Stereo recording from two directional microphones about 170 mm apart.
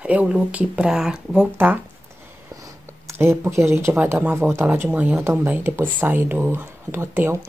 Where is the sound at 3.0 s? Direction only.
15° right (ahead or behind).